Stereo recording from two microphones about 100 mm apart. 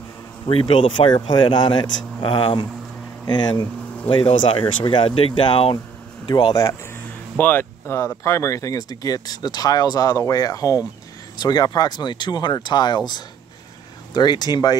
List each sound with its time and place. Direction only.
0.5 s speech: 65° left (ahead or behind)
3.3 s speech: 45° left (ahead or behind)
6.2 s speech: 45° left (ahead or behind)
7.3 s speech: 20° left (ahead or behind); by 14.8 s 45° left (ahead or behind)